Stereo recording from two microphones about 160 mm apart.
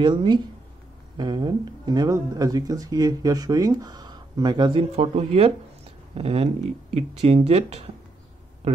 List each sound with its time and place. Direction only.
0.0 s speech: 30° right (ahead or behind)